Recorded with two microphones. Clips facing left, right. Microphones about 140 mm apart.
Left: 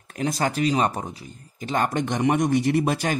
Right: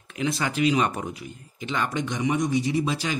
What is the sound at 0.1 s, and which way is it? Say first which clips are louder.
Speech: left 2 dB; 40° left (ahead or behind).